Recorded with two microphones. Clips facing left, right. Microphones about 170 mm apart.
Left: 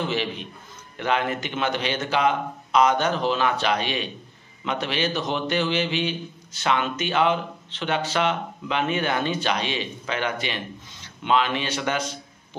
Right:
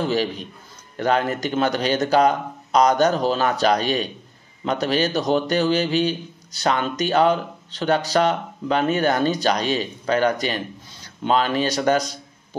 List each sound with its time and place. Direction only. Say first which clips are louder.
0.0 s a man's voice: right 4 dB; 40° right (ahead or behind)